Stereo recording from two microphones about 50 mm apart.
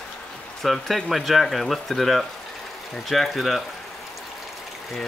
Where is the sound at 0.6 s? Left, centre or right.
Centre.